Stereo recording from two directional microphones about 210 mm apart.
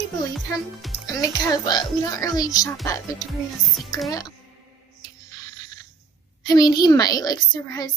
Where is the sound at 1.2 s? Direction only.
20° left (ahead or behind).